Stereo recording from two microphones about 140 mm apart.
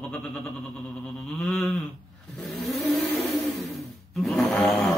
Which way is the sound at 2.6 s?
Centre (ahead or behind).